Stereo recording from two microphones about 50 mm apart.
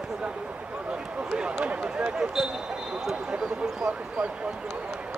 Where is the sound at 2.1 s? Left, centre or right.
Centre.